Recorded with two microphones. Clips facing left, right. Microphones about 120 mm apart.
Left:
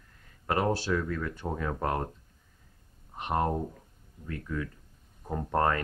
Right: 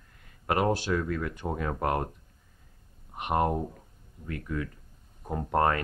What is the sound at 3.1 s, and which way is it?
Speech, 15° right (ahead or behind).